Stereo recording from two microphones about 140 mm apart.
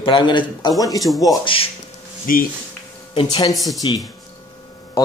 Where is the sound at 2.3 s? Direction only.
85° left.